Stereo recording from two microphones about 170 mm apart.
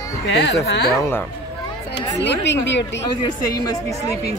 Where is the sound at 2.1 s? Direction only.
90° left.